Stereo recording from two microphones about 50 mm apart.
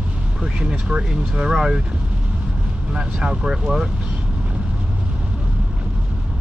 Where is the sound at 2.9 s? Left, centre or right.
Centre.